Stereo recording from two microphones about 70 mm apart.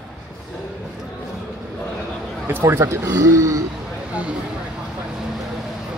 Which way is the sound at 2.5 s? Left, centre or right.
Right.